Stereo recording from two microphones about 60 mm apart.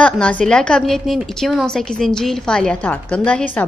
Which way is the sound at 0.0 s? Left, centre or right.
Centre.